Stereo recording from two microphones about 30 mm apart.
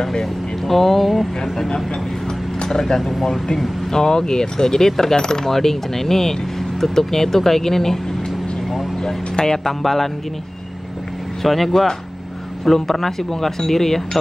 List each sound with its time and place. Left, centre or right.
0.0 s speech: centre
0.7 s speech: centre
2.6 s speech: centre
3.0 s speech: centre
3.9 s speech: left
9.0 s speech: centre
11.4 s speech: centre